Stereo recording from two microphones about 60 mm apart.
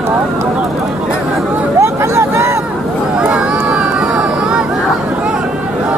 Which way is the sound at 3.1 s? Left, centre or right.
Centre.